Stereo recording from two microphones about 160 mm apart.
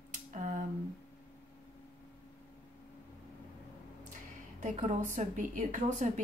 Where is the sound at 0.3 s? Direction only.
50° right (ahead or behind).